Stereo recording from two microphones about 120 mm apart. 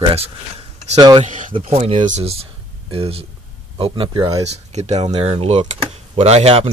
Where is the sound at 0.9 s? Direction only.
35° right (ahead or behind).